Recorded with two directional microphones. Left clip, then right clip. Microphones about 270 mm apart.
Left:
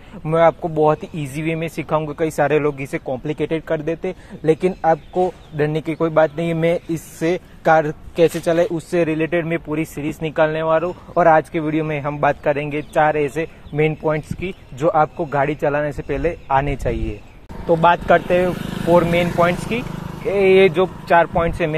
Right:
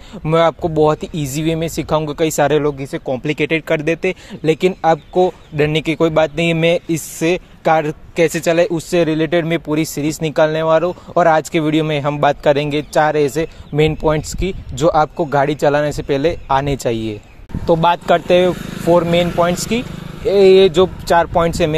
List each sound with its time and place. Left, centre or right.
0.2 s speech: right
2.6 s speech: centre
3.1 s speech: right
18.6 s speech: centre
18.9 s speech: right